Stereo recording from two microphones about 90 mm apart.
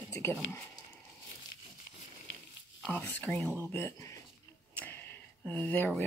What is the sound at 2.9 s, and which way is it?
Speech, 15° left (ahead or behind).